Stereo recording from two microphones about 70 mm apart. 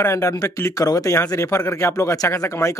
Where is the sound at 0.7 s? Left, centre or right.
Left.